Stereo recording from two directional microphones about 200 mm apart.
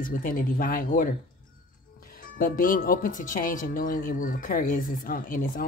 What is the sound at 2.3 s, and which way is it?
Speech, 45° left (ahead or behind).